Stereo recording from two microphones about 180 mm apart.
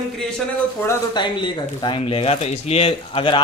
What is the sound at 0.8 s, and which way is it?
Speech, 15° left (ahead or behind).